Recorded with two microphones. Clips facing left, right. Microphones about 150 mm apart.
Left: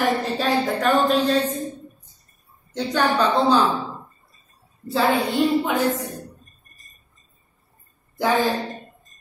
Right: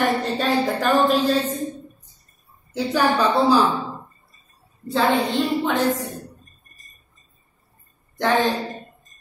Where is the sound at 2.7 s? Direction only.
10° right (ahead or behind).